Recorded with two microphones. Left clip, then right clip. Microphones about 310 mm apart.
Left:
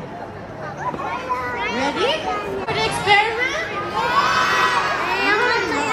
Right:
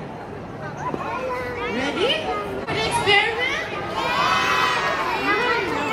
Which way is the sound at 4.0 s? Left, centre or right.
Centre.